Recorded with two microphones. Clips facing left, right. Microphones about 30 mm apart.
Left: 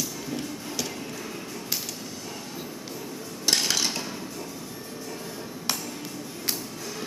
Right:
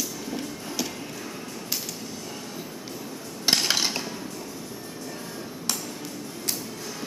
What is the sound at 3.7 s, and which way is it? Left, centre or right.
Dishes, centre.